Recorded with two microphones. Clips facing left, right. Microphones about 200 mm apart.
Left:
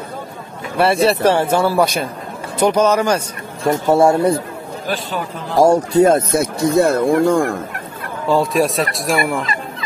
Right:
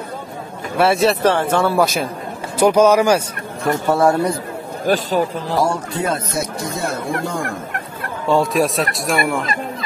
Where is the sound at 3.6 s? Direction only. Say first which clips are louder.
Left 3 dB; 25° left (ahead or behind).